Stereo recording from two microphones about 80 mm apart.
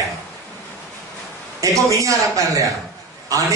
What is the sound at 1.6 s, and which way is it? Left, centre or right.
A man's voice, right.